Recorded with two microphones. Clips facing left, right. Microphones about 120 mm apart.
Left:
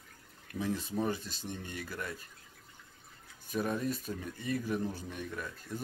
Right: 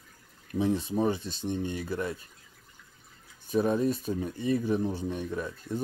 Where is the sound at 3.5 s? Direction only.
30° right (ahead or behind).